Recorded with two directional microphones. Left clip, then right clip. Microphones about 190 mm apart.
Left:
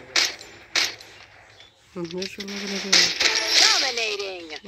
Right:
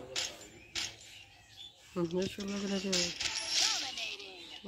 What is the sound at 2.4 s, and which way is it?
Coin, 35° left (ahead or behind).